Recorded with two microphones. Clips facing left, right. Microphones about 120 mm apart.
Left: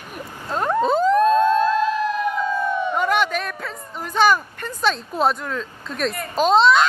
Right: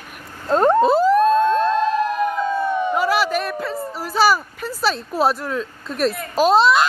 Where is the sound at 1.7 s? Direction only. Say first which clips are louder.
Right 1 dB; 40° right (ahead or behind).